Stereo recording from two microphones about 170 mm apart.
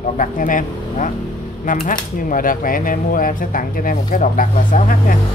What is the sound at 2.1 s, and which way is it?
Speech, 55° left (ahead or behind).